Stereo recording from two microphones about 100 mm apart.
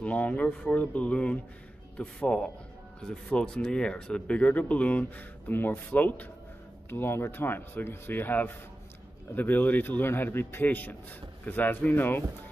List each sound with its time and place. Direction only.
0.0 s a man's voice: 10° left (ahead or behind)